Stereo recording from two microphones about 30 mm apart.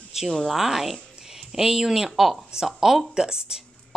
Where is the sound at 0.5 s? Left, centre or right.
Centre.